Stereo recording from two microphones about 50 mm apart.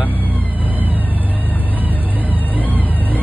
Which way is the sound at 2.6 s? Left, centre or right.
Left.